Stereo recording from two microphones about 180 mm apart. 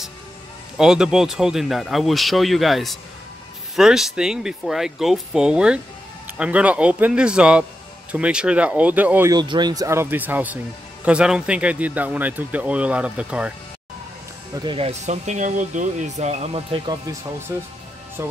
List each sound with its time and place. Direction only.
0.7 s speech: 5° right (ahead or behind)
9.3 s speech: 25° right (ahead or behind); by 13.5 s 5° right (ahead or behind)
14.5 s speech: 25° right (ahead or behind)
18.2 s speech: 15° right (ahead or behind)